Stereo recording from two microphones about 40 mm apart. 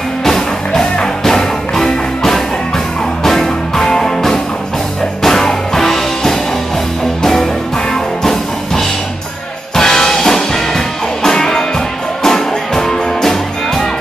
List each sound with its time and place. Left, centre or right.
0.2 s music: centre
7.9 s music: centre